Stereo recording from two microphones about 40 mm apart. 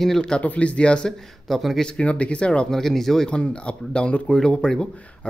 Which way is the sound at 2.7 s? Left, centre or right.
Centre.